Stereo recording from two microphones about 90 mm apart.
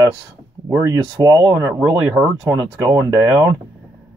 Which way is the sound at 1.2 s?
40° right (ahead or behind).